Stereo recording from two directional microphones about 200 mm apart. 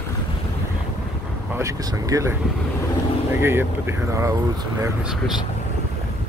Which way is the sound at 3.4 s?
10° right (ahead or behind).